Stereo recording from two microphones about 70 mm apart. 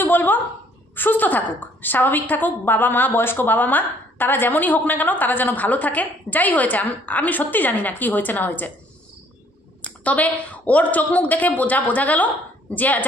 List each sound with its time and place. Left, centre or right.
0.0 s a sound: left
0.9 s a woman's voice: left
9.8 s a woman's voice: centre